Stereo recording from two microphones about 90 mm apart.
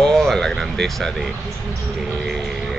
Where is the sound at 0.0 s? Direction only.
5° left (ahead or behind).